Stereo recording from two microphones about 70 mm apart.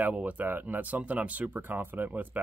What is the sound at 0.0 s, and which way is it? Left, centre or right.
Speech, right.